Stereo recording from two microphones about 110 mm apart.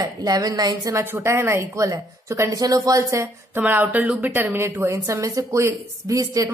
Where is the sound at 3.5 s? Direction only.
15° right (ahead or behind).